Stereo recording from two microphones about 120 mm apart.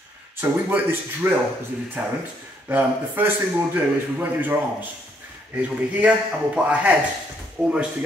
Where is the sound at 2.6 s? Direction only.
15° right (ahead or behind).